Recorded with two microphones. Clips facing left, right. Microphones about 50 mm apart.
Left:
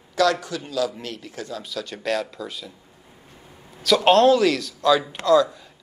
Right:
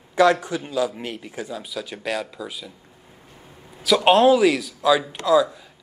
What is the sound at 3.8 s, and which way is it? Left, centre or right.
Speech, centre.